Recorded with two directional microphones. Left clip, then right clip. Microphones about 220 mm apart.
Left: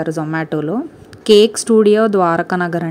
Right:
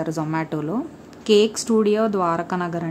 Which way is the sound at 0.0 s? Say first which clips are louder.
Left 5 dB; 20° left (ahead or behind).